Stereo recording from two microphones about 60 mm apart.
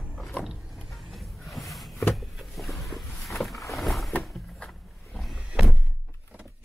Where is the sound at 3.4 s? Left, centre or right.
Centre.